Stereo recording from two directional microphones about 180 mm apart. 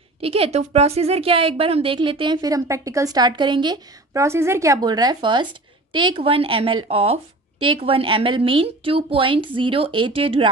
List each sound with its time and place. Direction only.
0.2 s a woman's voice: 35° right (ahead or behind)